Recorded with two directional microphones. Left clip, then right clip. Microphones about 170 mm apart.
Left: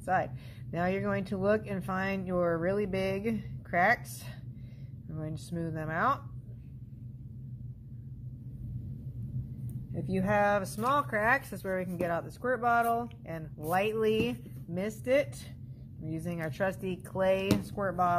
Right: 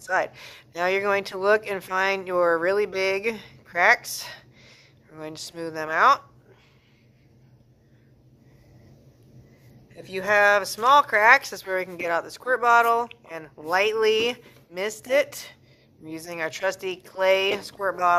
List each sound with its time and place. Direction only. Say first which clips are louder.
0.1 s speech: right 5 dB; 20° right (ahead or behind)
10.1 s speech: right 9 dB; 20° right (ahead or behind)